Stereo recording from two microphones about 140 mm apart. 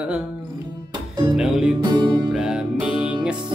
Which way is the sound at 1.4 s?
5° right (ahead or behind).